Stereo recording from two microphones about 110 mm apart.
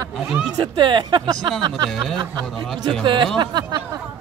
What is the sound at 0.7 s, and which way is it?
Speech, 45° right (ahead or behind).